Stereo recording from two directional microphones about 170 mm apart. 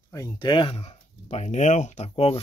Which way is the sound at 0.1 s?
25° left (ahead or behind).